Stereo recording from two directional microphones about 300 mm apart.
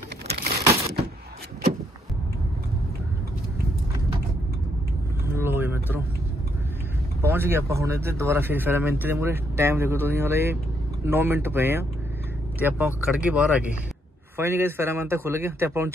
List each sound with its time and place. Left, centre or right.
0.3 s a sound: right
5.3 s vehicle: centre
7.2 s speech: centre